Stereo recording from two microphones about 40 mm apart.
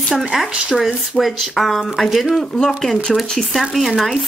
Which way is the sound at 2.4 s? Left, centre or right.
Centre.